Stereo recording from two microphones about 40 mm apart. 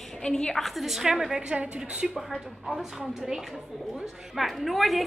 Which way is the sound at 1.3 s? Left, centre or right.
Right.